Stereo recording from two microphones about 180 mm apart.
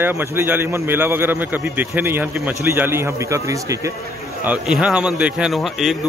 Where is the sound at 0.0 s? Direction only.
10° right (ahead or behind).